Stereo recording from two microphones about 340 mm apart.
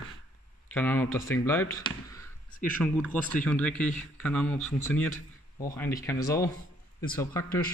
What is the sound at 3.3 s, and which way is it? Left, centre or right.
Speech, centre.